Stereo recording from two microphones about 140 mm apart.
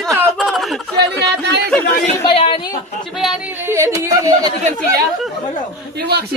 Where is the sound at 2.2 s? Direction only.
40° left (ahead or behind).